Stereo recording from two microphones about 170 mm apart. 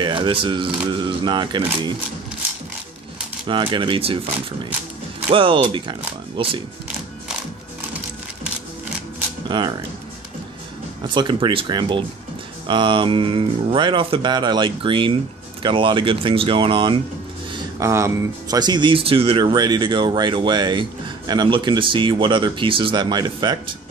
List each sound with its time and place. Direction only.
0.0 s speech: 30° right (ahead or behind)
3.4 s speech: 30° right (ahead or behind)
9.5 s speech: 30° right (ahead or behind)
11.1 s speech: 30° right (ahead or behind)
17.7 s speech: 20° right (ahead or behind)